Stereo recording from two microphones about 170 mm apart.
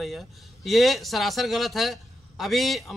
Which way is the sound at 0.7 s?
Centre (ahead or behind).